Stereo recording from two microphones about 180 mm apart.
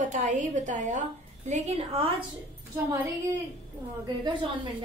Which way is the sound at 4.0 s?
25° right (ahead or behind).